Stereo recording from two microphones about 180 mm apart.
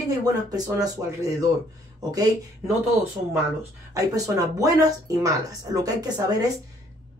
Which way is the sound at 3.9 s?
20° right (ahead or behind).